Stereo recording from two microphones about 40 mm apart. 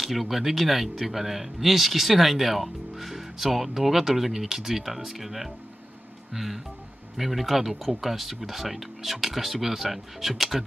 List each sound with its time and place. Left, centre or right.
0.0 s speech: centre